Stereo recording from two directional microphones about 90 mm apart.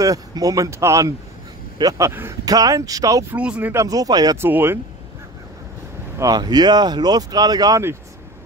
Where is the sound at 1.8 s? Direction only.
55° right (ahead or behind).